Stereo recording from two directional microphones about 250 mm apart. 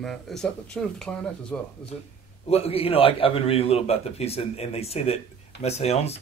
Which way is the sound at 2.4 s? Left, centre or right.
Left.